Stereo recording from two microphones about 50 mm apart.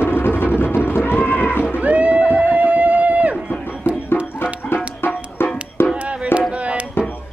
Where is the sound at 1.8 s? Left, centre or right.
Right.